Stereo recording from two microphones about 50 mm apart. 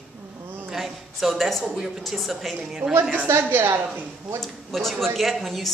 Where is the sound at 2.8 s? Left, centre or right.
Right.